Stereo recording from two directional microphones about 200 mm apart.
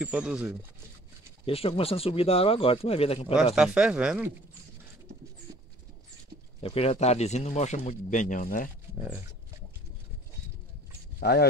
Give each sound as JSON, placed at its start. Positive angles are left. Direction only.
{"t": 0.0, "sound": "speech", "side_deg": -5}
{"t": 1.4, "sound": "speech", "side_deg": 30}
{"t": 3.5, "sound": "speech", "side_deg": -5}
{"t": 6.6, "sound": "speech", "side_deg": 30}
{"t": 11.1, "sound": "speech", "side_deg": 50}